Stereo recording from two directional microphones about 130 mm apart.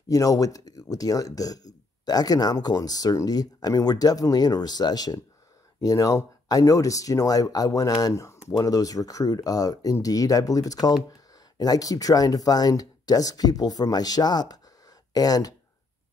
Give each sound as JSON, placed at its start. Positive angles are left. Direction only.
{"t": 0.1, "sound": "speech", "side_deg": 25}